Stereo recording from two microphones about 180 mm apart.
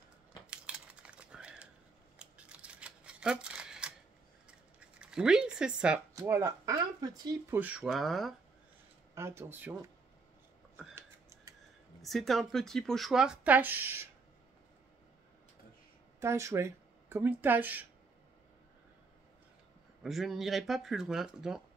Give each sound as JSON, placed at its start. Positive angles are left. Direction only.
{"t": 0.5, "sound": "a sound", "side_deg": -5}
{"t": 2.1, "sound": "scissors", "side_deg": -5}
{"t": 4.5, "sound": "a sound", "side_deg": -5}
{"t": 6.1, "sound": "speech", "side_deg": -15}
{"t": 7.5, "sound": "speech", "side_deg": -5}
{"t": 9.1, "sound": "speech", "side_deg": -15}
{"t": 11.0, "sound": "typing", "side_deg": -15}
{"t": 12.0, "sound": "speech", "side_deg": 0}
{"t": 16.2, "sound": "speech", "side_deg": -15}
{"t": 20.0, "sound": "speech", "side_deg": 0}